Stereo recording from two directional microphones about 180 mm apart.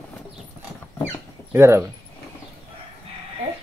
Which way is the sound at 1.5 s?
15° right (ahead or behind).